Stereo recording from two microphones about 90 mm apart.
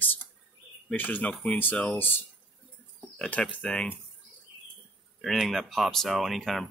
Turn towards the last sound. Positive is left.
turn(degrees=0)  # may be behind; listen again after turning